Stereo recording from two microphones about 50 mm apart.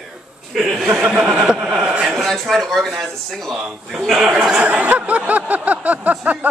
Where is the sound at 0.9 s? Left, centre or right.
Right.